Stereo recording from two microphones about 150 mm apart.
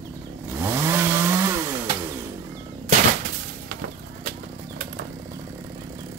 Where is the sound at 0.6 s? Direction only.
15° right (ahead or behind).